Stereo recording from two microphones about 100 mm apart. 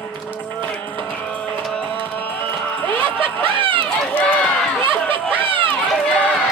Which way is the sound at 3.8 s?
15° left (ahead or behind).